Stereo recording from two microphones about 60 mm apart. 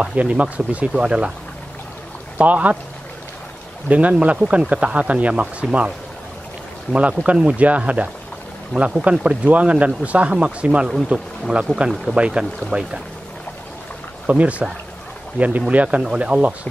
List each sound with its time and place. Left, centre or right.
0.0 s speech: right
2.3 s speech: right
3.9 s speech: right
6.9 s speech: right
12.7 s speech: right
14.2 s speech: centre